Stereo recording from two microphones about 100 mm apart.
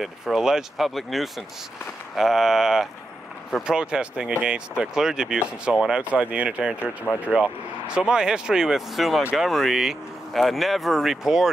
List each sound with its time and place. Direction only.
0.0 s speech: 5° right (ahead or behind)
6.8 s speech: 20° left (ahead or behind)
7.9 s speech: 10° right (ahead or behind)